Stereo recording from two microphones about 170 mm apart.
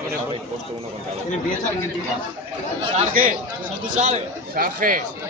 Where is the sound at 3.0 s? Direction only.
50° right (ahead or behind).